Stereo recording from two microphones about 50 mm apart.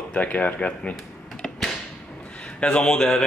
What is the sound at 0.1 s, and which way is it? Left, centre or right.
Speech, left.